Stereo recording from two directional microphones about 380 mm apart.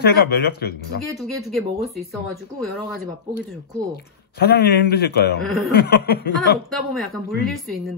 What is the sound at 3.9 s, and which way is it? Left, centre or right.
Speech, left.